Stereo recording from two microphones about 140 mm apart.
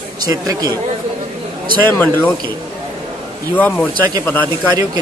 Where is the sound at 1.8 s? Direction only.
15° left (ahead or behind).